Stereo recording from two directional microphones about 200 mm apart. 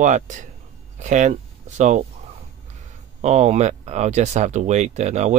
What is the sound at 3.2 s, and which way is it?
Speech, 35° right (ahead or behind).